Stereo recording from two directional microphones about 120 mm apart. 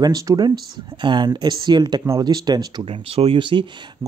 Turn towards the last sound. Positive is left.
turn(degrees=-45)  # may be behind; listen again after turning